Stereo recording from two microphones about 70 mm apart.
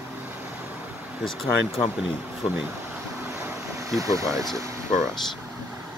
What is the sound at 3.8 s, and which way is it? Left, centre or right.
Speech, right.